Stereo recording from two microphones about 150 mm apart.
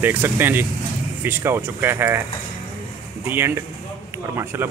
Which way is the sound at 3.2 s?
15° right (ahead or behind).